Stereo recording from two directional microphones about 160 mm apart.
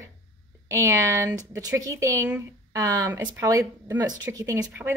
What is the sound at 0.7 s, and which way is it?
Speech, 20° right (ahead or behind).